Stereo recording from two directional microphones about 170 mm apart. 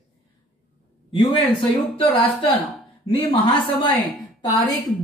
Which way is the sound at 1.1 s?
30° left (ahead or behind).